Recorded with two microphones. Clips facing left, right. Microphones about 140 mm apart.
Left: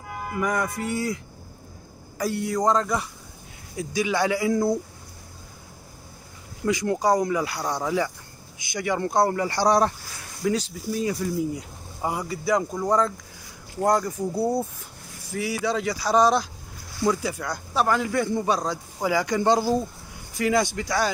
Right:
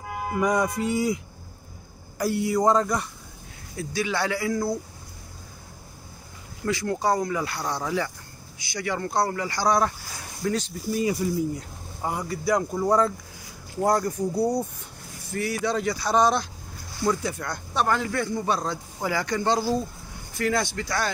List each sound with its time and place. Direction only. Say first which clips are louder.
0.3 s speech: right 3 dB; 20° right (ahead or behind)
2.1 s speech: right 2 dB; 5° right (ahead or behind)
3.7 s speech: left 3 dB; 15° left (ahead or behind)
6.6 s speech: left 2 dB; 15° left (ahead or behind)
10.4 s speech: left 2 dB; 10° left (ahead or behind)
10.9 s speech: right 1 dB; 5° right (ahead or behind)
11.3 s speech: even; 5° left (ahead or behind)